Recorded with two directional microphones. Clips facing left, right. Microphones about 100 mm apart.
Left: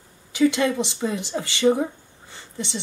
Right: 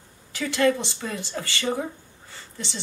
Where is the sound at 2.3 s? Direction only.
20° left (ahead or behind).